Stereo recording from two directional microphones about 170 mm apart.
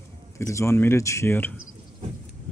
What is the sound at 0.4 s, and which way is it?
Speech, 15° left (ahead or behind).